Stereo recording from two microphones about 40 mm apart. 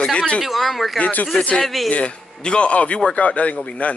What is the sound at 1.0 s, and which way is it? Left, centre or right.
Speech, left.